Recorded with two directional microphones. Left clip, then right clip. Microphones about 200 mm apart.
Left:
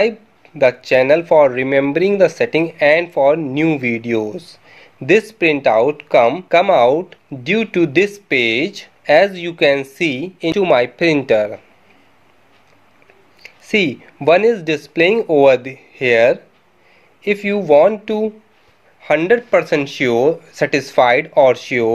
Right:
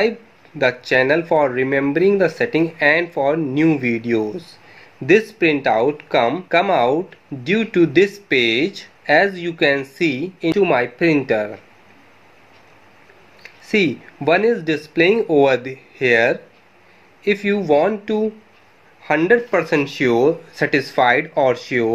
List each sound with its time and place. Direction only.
0.6 s speech: 25° left (ahead or behind)
13.4 s speech: 25° left (ahead or behind)